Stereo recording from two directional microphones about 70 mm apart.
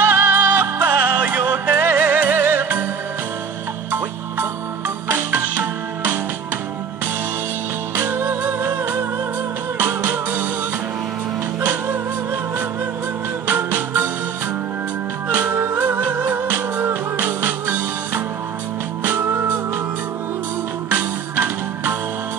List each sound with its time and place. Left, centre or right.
0.0 s music: right
3.9 s music: right
7.9 s music: right
11.6 s music: right
13.5 s music: right
15.2 s music: right
20.9 s music: right